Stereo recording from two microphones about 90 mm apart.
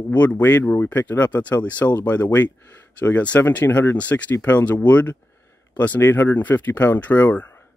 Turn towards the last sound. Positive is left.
turn(degrees=20)  # may be behind; listen again after turning